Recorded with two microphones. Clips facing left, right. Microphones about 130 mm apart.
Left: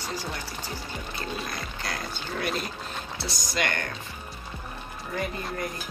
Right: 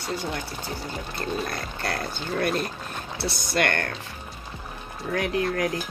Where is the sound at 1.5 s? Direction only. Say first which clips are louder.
Right 4 dB; 60° right (ahead or behind).